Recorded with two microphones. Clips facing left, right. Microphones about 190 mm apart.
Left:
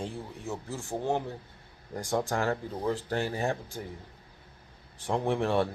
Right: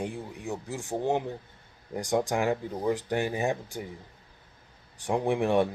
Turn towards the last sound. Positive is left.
turn(degrees=-15)  # may be behind; listen again after turning